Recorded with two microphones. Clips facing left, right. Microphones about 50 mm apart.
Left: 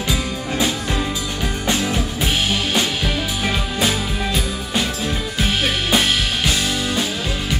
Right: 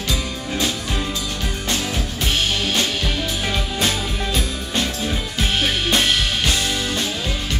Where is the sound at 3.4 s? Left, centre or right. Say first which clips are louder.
Left 3 dB; centre.